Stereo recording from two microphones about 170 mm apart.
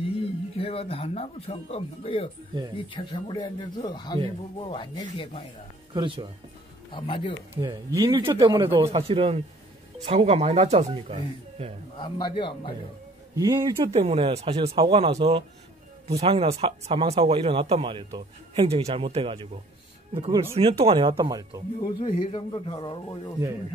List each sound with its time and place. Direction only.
0.6 s speech: 35° left (ahead or behind)
5.9 s speech: 30° right (ahead or behind)
6.9 s speech: 30° left (ahead or behind)
7.5 s speech: 20° right (ahead or behind)
8.7 s speech: 30° right (ahead or behind)
12.0 s speech: 25° left (ahead or behind)
13.4 s speech: 25° right (ahead or behind)
13.9 s speech: 35° right (ahead or behind)
22.0 s speech: 30° left (ahead or behind)